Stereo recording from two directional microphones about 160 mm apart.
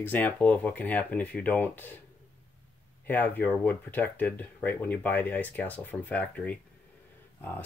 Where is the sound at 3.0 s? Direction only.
10° left (ahead or behind).